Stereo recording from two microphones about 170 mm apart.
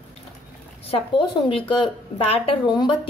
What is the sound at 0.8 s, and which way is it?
A woman's voice, 30° left (ahead or behind).